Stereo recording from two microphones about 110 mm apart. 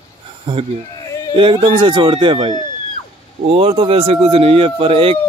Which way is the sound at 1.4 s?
55° right (ahead or behind).